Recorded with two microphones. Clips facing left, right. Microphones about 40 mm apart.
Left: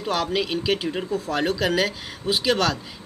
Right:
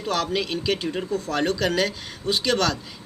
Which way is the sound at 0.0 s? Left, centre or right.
Centre.